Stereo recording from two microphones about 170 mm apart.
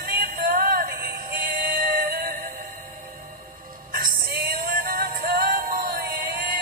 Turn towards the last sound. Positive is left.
turn(degrees=-60)  # may be behind; listen again after turning